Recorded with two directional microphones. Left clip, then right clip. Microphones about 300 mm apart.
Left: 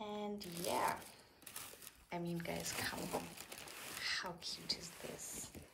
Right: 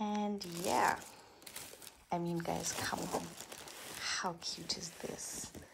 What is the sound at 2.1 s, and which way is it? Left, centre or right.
Speech, centre.